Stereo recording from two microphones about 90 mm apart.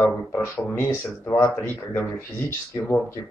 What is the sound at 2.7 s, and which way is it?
Speech, 45° left (ahead or behind).